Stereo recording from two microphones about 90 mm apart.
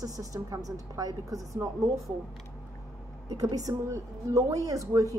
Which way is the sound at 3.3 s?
45° right (ahead or behind).